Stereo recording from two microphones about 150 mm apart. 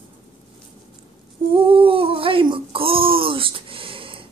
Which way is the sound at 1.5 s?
35° right (ahead or behind).